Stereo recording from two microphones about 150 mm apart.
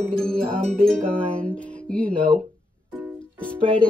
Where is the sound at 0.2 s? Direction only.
5° left (ahead or behind).